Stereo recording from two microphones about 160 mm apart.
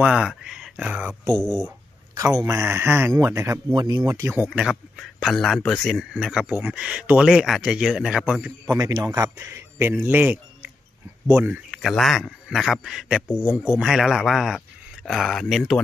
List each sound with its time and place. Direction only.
0.0 s a man's voice: 5° right (ahead or behind)
2.1 s speech: 20° right (ahead or behind)
4.5 s a man's voice: centre (ahead or behind)
8.7 s a man's voice: 20° right (ahead or behind); by 15.8 s centre (ahead or behind)